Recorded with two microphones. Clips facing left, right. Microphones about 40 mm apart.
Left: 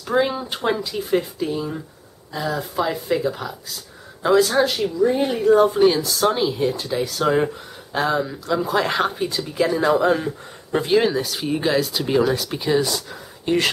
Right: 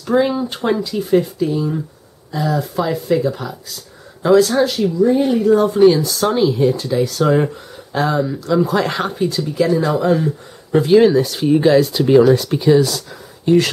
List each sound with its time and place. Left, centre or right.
0.0 s speech: centre